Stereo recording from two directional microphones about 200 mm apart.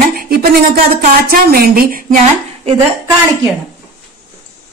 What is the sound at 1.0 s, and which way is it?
Music, 45° right (ahead or behind).